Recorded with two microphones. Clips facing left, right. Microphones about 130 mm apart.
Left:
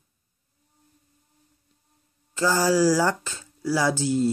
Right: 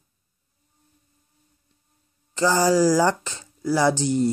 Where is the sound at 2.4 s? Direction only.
15° right (ahead or behind).